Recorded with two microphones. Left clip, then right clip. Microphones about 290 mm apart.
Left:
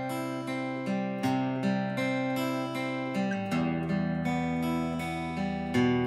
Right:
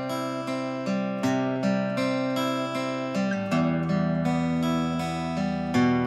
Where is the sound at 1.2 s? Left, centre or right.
Centre.